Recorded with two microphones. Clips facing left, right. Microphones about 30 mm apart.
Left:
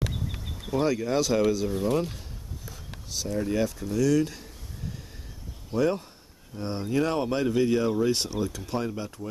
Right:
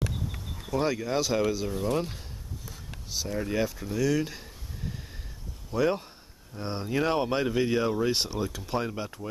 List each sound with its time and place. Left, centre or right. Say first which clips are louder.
0.0 s a sound: left 1 dB; centre
0.7 s speech: left 2 dB; centre
3.1 s speech: left 2 dB; centre